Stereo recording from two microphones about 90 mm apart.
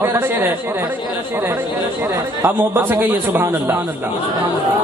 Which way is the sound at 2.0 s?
30° right (ahead or behind).